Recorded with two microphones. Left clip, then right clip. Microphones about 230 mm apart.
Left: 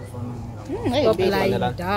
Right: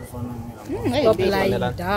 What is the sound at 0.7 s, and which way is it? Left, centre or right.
Speech, centre.